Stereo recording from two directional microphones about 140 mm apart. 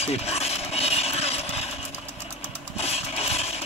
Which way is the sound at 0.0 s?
50° left (ahead or behind).